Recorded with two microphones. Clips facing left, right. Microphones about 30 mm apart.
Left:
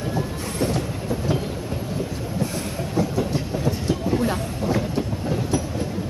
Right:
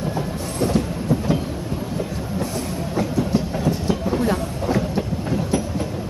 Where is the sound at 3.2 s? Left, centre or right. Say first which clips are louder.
Right 3 dB; centre.